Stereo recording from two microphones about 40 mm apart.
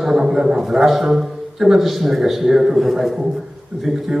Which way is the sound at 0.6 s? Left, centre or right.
Centre.